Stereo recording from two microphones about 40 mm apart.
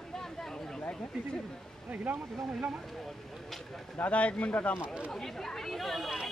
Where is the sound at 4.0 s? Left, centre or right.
Left.